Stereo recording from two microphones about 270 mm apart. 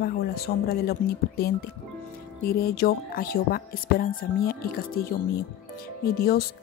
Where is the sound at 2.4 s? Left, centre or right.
Left.